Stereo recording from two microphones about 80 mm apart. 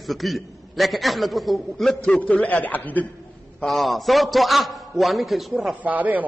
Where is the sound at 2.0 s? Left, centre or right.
Centre.